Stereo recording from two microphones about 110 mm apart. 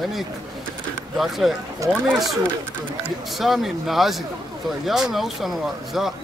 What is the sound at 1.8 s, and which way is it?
Speech, 30° right (ahead or behind).